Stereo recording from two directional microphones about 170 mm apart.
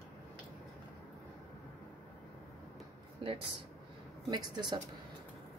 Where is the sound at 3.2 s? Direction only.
30° right (ahead or behind).